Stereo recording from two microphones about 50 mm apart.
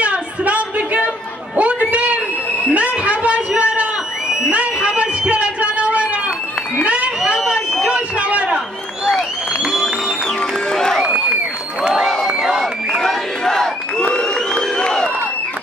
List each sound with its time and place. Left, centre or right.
0.0 s a sound: right
9.6 s music: centre
10.7 s crowd: centre
11.9 s crowd: centre
13.0 s crowd: centre